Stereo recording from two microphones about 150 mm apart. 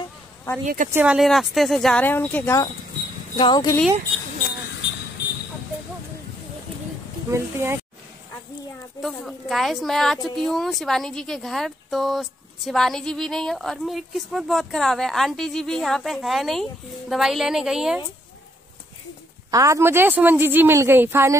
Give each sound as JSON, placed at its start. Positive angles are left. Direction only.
{"t": 0.5, "sound": "speech", "side_deg": 20}
{"t": 0.9, "sound": "a woman's voice", "side_deg": -5}
{"t": 2.0, "sound": "speech", "side_deg": 15}
{"t": 3.3, "sound": "speech", "side_deg": 30}
{"t": 7.2, "sound": "a woman's voice", "side_deg": -15}
{"t": 9.0, "sound": "a woman's voice", "side_deg": 0}
{"t": 19.5, "sound": "a woman's voice", "side_deg": -20}